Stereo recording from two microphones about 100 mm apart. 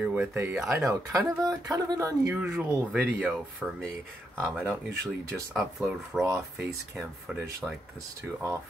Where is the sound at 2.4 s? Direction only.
10° right (ahead or behind).